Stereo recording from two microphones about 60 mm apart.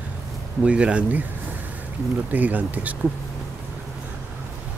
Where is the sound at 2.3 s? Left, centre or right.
Right.